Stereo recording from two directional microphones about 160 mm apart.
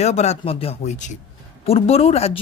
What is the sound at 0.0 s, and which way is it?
A woman's voice, 45° left (ahead or behind).